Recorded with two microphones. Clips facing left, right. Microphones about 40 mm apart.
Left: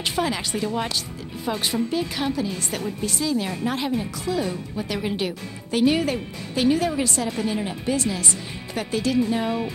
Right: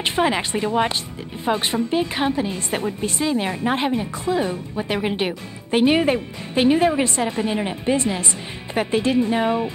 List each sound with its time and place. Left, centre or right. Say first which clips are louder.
0.0 s a woman's voice: right 5 dB; right